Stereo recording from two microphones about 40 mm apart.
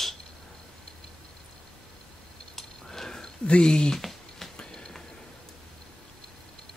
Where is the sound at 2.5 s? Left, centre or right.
Centre.